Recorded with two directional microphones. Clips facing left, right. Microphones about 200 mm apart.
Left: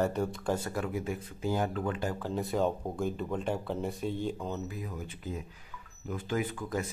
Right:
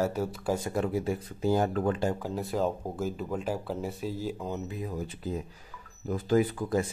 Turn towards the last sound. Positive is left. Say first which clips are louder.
# right 7 dB
turn(degrees=-35)  # may be behind; listen again after turning